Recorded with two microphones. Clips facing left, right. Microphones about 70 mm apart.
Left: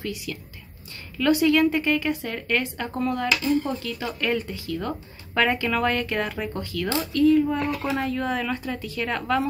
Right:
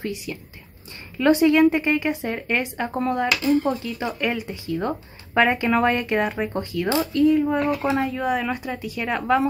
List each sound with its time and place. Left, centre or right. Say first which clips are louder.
0.0 s speech: right 2 dB; right